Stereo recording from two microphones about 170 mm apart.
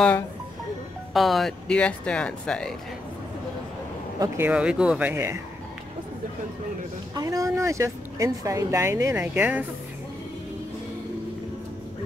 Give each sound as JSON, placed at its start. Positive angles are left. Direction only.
{"t": 1.1, "sound": "speech", "side_deg": 0}
{"t": 4.2, "sound": "speech", "side_deg": -10}
{"t": 7.2, "sound": "speech", "side_deg": -20}